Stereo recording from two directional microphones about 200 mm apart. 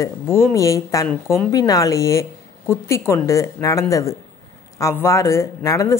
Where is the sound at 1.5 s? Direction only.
15° left (ahead or behind).